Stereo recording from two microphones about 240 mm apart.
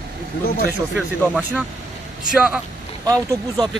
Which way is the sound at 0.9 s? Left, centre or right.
Centre.